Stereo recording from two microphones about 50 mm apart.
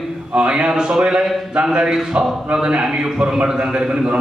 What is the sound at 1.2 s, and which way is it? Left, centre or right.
Speech, centre.